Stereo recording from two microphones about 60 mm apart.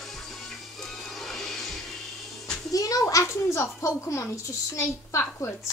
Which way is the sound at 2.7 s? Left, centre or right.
Left.